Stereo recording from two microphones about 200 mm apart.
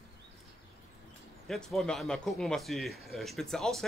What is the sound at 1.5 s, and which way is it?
Speech, centre (ahead or behind).